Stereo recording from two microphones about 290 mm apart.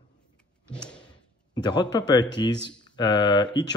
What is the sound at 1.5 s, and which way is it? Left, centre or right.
Speech, centre.